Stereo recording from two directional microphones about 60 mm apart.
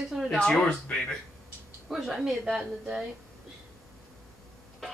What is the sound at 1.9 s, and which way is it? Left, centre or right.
A woman's voice, centre.